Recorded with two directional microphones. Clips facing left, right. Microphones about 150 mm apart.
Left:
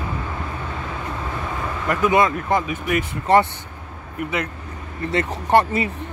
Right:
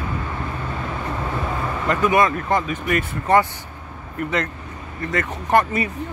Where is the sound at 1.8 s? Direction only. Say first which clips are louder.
Even; 10° left (ahead or behind).